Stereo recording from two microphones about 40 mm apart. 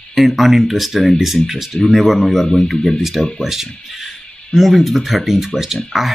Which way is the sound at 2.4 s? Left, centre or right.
Centre.